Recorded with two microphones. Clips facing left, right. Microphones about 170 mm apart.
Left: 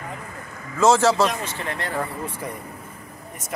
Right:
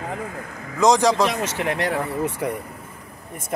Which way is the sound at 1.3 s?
75° right (ahead or behind).